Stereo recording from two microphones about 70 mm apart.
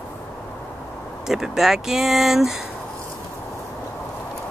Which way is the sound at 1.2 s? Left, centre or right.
Centre.